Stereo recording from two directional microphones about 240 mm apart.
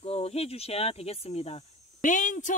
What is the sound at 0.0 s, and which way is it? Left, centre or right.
Speech, left.